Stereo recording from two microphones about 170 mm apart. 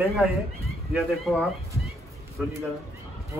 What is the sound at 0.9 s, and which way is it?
Speech, centre (ahead or behind).